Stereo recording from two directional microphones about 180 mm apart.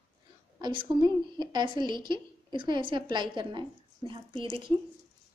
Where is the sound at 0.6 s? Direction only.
25° right (ahead or behind).